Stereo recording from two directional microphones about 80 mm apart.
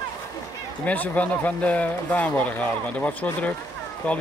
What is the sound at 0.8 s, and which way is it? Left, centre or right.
Speech, left.